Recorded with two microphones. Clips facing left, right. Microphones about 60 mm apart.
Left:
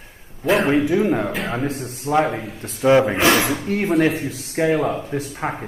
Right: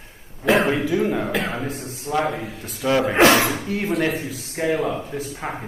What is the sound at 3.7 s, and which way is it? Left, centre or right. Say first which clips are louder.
Speech: left 4 dB; left.